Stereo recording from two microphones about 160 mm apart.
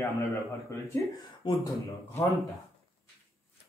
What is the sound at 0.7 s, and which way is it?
Speech, 15° left (ahead or behind).